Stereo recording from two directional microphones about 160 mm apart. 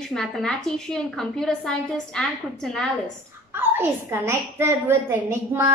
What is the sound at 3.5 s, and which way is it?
A woman's voice, 15° right (ahead or behind).